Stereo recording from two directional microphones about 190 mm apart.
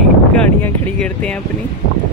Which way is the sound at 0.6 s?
5° left (ahead or behind).